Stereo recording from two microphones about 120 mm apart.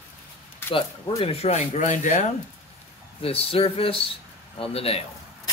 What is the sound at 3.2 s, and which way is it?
A man's voice, 50° left (ahead or behind).